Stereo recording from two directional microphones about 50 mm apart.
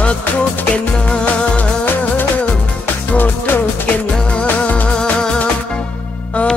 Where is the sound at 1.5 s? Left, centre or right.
Left.